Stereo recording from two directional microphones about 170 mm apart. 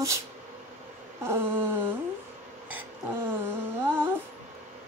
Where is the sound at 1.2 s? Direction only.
15° right (ahead or behind).